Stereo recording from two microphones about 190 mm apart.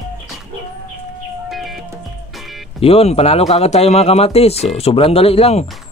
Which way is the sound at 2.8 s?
30° left (ahead or behind).